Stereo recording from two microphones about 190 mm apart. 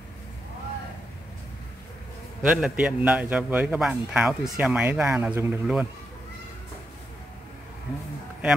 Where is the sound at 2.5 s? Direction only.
5° right (ahead or behind).